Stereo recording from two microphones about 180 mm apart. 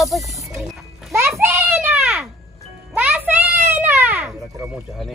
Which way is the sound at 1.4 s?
15° right (ahead or behind).